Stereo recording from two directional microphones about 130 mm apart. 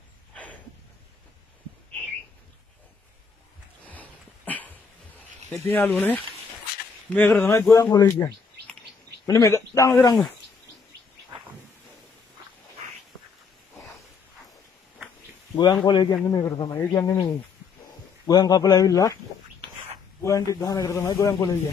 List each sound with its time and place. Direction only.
0.3 s a sound: 10° left (ahead or behind)
3.8 s dog: 10° left (ahead or behind)
5.7 s a man's voice: 15° left (ahead or behind)
15.5 s a man's voice: 35° left (ahead or behind)
18.2 s a man's voice: 30° left (ahead or behind)
20.2 s a man's voice: 25° left (ahead or behind)